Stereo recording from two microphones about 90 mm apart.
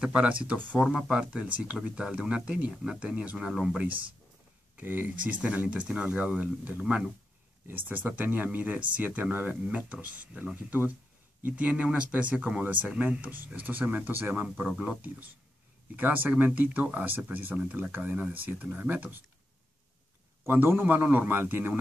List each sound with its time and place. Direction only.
0.0 s speech: 10° right (ahead or behind)
0.7 s speech: 5° right (ahead or behind)
7.6 s speech: 20° right (ahead or behind)
20.4 s speech: 25° right (ahead or behind)